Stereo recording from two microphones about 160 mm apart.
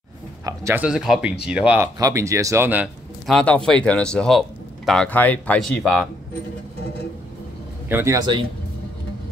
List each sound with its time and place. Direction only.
0.5 s a sound: 20° right (ahead or behind)
0.8 s speech: 5° right (ahead or behind)
2.0 s speech: 20° right (ahead or behind)
3.3 s speech: 5° left (ahead or behind)
7.9 s speech: 20° right (ahead or behind)